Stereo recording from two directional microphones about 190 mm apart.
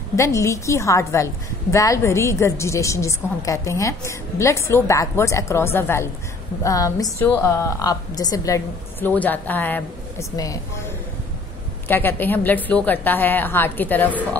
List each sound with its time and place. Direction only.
0.1 s a woman's voice: 15° left (ahead or behind)
11.9 s a woman's voice: 10° left (ahead or behind)